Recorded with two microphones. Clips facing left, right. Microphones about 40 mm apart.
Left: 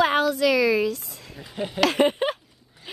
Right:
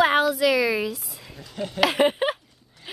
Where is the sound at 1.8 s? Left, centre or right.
Centre.